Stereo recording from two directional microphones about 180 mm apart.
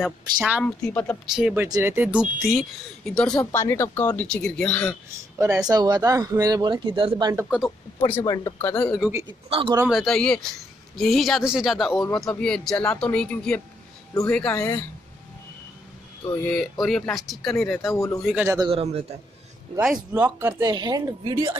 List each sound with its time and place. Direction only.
0.0 s speech: centre (ahead or behind)
0.7 s speech: 10° left (ahead or behind)
1.3 s speech: 10° right (ahead or behind)
5.7 s speech: 20° right (ahead or behind)
7.4 s speech: centre (ahead or behind)
8.2 s speech: 20° left (ahead or behind); by 9.1 s 5° left (ahead or behind)
9.5 s a man's voice: 30° right (ahead or behind)
9.8 s speech: centre (ahead or behind)
14.5 s speech: 15° left (ahead or behind)
16.4 s speech: 5° left (ahead or behind)
17.9 s speech: 15° left (ahead or behind)
18.2 s speech: 5° right (ahead or behind)
18.7 s a man's voice: 35° right (ahead or behind)
19.9 s speech: 10° right (ahead or behind)